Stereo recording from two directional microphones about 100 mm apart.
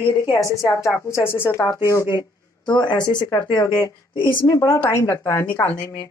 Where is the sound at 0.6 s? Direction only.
30° left (ahead or behind).